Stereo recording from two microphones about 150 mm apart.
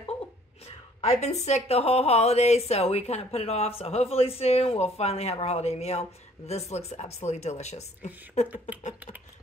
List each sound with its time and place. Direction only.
0.7 s a woman's voice: 45° left (ahead or behind)